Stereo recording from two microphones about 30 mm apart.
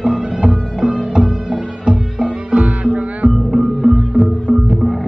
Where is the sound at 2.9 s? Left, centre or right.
Right.